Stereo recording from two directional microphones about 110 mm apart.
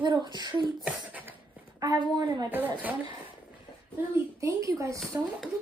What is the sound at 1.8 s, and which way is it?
Speech, 35° right (ahead or behind).